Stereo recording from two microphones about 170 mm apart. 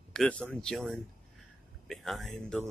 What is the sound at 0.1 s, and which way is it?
Speech, 5° left (ahead or behind).